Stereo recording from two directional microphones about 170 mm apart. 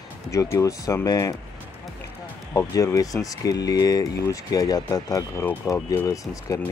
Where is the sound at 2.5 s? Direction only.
20° left (ahead or behind).